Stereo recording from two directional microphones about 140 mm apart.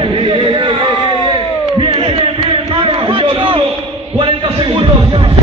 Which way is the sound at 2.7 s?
40° right (ahead or behind).